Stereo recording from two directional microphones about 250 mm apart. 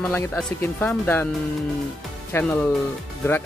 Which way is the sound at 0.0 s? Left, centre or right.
Centre.